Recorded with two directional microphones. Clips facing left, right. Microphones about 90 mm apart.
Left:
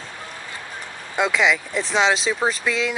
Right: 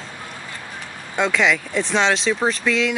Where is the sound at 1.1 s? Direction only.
5° left (ahead or behind).